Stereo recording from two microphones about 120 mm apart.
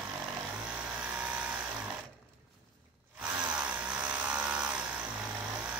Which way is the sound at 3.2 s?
10° right (ahead or behind).